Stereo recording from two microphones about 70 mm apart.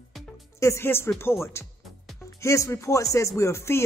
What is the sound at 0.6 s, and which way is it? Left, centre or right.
Speech, left.